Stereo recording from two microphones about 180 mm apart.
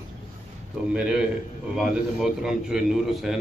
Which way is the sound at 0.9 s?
5° right (ahead or behind).